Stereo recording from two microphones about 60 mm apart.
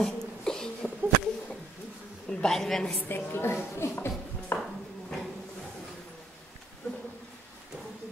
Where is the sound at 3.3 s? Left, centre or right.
Left.